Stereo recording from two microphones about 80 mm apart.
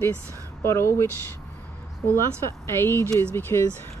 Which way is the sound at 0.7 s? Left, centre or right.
Left.